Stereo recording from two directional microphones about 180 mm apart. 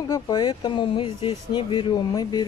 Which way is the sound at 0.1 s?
25° left (ahead or behind).